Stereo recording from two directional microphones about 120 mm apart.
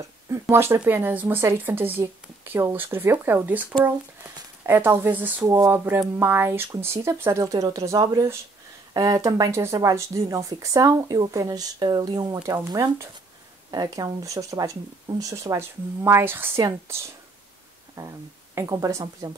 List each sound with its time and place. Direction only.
0.3 s speech: 20° right (ahead or behind)
5.4 s speech: 30° right (ahead or behind)
17.9 s speech: 25° right (ahead or behind)